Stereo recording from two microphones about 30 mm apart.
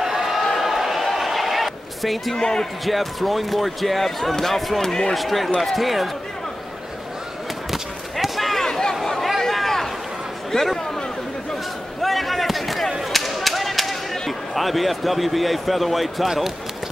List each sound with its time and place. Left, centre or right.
0.0 s a sound: centre
2.3 s speech: left
2.8 s speech: centre
8.4 s a sound: centre
8.6 s chatter: centre
9.5 s a sound: centre
10.5 s a man's voice: centre
12.0 s basketball bounce: centre
13.1 s whip: centre
14.5 s speech: centre